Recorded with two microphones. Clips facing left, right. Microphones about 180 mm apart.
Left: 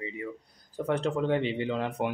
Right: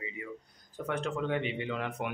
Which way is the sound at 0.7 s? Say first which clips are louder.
Left 6 dB; 30° left (ahead or behind).